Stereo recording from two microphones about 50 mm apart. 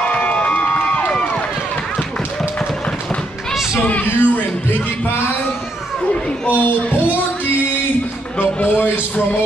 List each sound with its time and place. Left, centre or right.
0.1 s crowd: left
4.0 s music: left
6.4 s speech: left
8.4 s a man's voice: left